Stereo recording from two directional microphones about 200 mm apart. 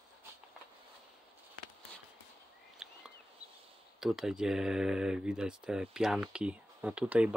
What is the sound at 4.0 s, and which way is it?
Speech, centre (ahead or behind).